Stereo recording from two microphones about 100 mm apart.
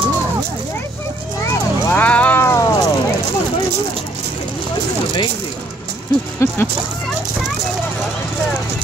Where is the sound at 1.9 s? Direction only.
15° left (ahead or behind).